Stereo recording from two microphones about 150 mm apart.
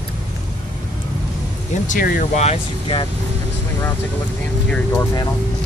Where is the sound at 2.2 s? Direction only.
50° left (ahead or behind).